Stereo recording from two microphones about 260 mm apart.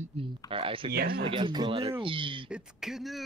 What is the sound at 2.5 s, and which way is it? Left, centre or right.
Speech, centre.